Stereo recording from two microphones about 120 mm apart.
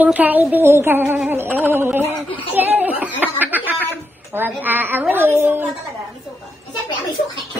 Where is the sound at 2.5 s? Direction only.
15° right (ahead or behind).